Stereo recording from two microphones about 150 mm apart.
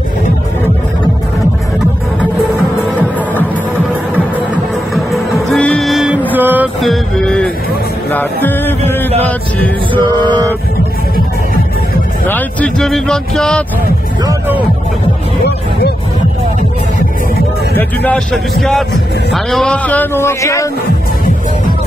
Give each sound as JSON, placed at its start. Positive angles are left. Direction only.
{"t": 3.0, "sound": "music", "side_deg": 10}
{"t": 4.9, "sound": "music", "side_deg": 0}
{"t": 6.3, "sound": "music", "side_deg": -10}
{"t": 6.8, "sound": "music", "side_deg": 5}
{"t": 10.0, "sound": "music", "side_deg": -30}
{"t": 12.3, "sound": "speech", "side_deg": 10}
{"t": 17.7, "sound": "a man's voice", "side_deg": 10}